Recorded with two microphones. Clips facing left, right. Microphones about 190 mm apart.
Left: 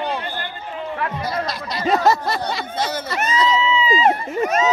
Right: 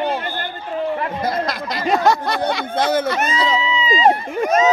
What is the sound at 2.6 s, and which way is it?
Speech, 55° right (ahead or behind).